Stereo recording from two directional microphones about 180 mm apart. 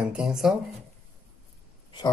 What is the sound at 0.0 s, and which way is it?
Speech, 5° right (ahead or behind).